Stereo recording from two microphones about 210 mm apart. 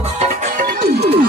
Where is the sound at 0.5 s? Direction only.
45° right (ahead or behind).